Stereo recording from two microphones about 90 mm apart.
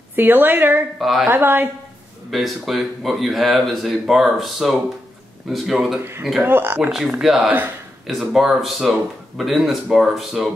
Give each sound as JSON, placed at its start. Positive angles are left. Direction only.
{"t": 0.1, "sound": "a woman's voice", "side_deg": -20}
{"t": 0.9, "sound": "speech", "side_deg": 0}
{"t": 1.2, "sound": "a woman's voice", "side_deg": -20}
{"t": 2.3, "sound": "speech", "side_deg": 0}
{"t": 6.4, "sound": "a woman's voice", "side_deg": -25}
{"t": 7.2, "sound": "speech", "side_deg": -5}